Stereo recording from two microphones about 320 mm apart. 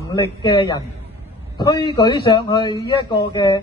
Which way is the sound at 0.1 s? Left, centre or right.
Centre.